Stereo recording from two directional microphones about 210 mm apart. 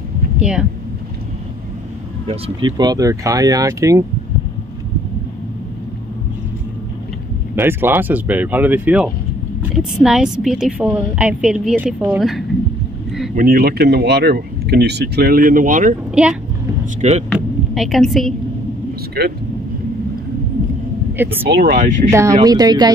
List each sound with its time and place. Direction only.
0.4 s speech: 5° right (ahead or behind)
2.2 s speech: 25° right (ahead or behind)
7.5 s a woman's voice: 10° right (ahead or behind)
13.3 s speech: 45° right (ahead or behind)
17.3 s a sound: centre (ahead or behind)
21.1 s speech: 10° right (ahead or behind)
21.5 s speech: 50° right (ahead or behind)
21.7 s speech: 35° right (ahead or behind)
22.4 s speech: 20° right (ahead or behind)